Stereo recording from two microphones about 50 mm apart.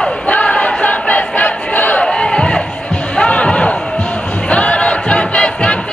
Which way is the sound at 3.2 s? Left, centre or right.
Left.